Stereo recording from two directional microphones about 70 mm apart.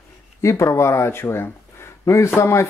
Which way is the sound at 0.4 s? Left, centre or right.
Left.